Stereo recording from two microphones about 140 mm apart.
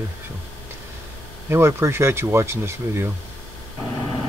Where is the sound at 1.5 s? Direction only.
15° right (ahead or behind).